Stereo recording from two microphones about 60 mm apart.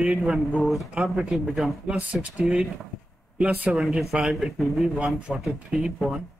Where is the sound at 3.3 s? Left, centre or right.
Centre.